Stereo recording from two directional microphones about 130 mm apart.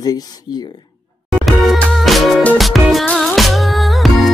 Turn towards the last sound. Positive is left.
turn(degrees=0)  # may be behind; listen again after turning